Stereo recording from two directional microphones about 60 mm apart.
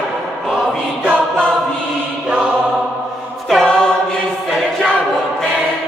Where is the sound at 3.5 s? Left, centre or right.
Centre.